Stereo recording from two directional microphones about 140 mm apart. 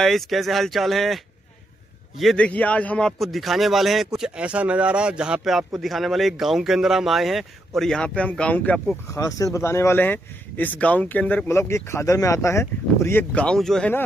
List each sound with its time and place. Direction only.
0.0 s speech: centre (ahead or behind)
9.1 s speech: 20° left (ahead or behind); by 13.9 s 5° left (ahead or behind)